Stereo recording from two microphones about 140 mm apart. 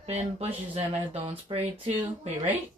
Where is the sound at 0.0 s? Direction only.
50° right (ahead or behind).